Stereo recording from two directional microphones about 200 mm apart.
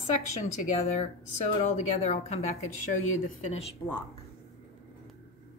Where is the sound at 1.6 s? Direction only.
30° left (ahead or behind).